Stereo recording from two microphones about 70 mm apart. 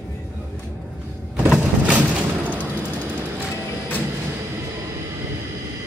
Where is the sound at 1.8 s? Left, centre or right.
Right.